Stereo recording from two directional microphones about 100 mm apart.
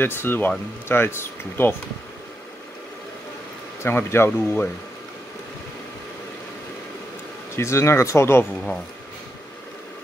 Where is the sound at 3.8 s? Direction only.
25° left (ahead or behind).